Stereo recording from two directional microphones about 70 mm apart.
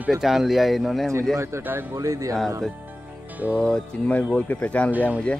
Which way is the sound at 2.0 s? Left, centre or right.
Right.